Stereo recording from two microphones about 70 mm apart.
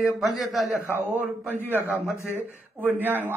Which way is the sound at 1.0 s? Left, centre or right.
Right.